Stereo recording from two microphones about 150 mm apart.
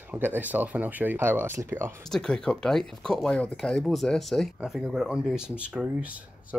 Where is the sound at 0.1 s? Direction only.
10° right (ahead or behind).